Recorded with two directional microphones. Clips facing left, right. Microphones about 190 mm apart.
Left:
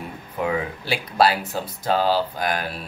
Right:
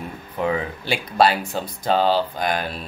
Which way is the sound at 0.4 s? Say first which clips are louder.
Right 1 dB; 5° left (ahead or behind).